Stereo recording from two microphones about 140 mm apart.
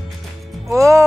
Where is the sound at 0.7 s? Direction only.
20° right (ahead or behind).